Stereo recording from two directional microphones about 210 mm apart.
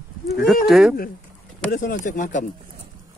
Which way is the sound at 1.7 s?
40° left (ahead or behind).